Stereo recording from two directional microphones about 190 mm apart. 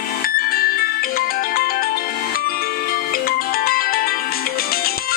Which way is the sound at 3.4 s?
50° left (ahead or behind).